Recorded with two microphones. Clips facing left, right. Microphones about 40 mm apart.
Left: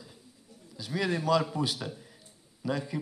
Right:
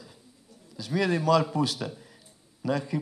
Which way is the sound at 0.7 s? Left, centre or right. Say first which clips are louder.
Right 4 dB; centre.